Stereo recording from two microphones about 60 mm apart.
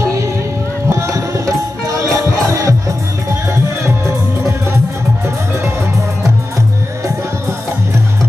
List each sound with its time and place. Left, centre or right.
0.0 s music: right
0.8 s tabla: right
2.0 s music: right